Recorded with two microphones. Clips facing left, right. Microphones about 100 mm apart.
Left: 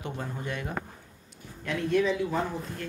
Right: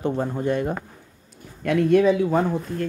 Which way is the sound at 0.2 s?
40° right (ahead or behind).